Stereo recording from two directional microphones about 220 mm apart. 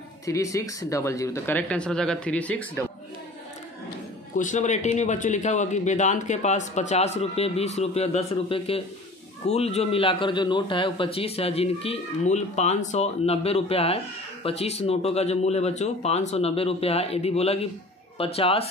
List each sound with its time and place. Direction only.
0.2 s speech: 15° left (ahead or behind)
4.4 s a man's voice: 35° left (ahead or behind)